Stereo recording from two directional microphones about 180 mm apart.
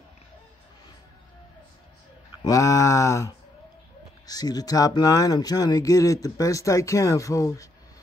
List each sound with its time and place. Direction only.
2.4 s speech: 20° left (ahead or behind)